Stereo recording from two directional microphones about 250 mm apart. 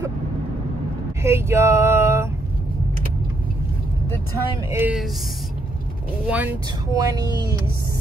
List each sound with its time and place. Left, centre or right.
1.2 s speech: centre
4.6 s speech: centre
6.2 s speech: centre